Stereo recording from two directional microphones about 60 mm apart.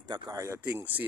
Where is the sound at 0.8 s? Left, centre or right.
Right.